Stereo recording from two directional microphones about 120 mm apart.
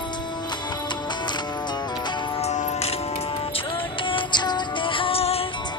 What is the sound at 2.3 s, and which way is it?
Music, 75° left (ahead or behind).